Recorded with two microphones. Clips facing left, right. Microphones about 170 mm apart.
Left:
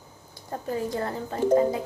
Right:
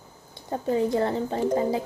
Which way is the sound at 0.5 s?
25° right (ahead or behind).